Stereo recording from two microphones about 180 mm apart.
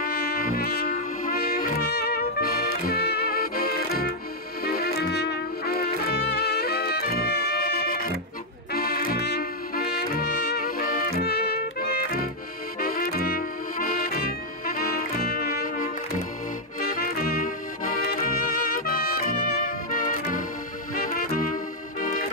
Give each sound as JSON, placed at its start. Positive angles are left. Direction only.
{"t": 0.0, "sound": "music", "side_deg": 60}